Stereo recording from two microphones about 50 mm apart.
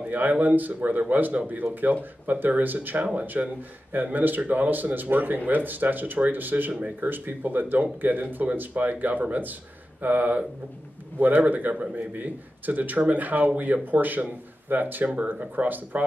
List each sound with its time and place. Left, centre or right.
0.0 s speech: right
15.0 s speech: right